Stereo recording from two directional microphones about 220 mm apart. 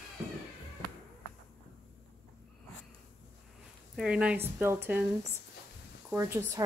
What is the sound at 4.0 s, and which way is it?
Speech, 5° right (ahead or behind).